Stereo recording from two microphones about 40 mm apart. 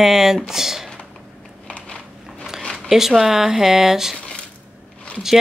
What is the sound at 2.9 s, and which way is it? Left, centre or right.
Speech, centre.